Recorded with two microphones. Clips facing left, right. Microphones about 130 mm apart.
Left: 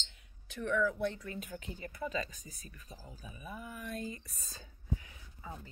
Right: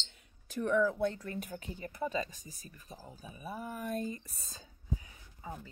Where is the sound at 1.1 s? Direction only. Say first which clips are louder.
Right 2 dB; 40° right (ahead or behind).